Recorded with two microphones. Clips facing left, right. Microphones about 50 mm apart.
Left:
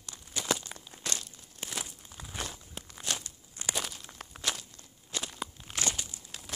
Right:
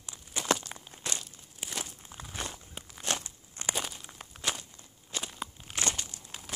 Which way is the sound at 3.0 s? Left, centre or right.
Right.